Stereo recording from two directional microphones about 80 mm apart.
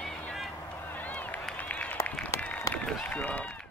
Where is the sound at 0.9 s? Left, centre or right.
Left.